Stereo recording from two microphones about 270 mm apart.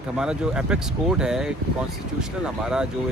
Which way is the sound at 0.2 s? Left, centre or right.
Centre.